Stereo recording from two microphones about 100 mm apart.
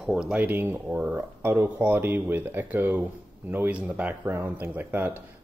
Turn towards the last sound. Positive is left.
turn(degrees=-15)  # may be behind; listen again after turning